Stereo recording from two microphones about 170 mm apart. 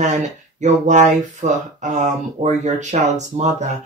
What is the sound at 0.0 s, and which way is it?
Speech, 45° right (ahead or behind).